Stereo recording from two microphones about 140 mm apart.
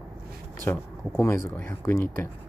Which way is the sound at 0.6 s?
15° left (ahead or behind).